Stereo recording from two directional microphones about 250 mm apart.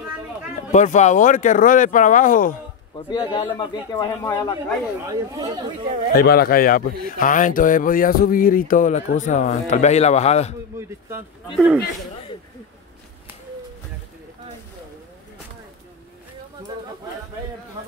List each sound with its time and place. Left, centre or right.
0.7 s a man's voice: left
3.1 s a man's voice: centre
5.0 s speech: centre
6.1 s a man's voice: left
10.8 s a man's voice: centre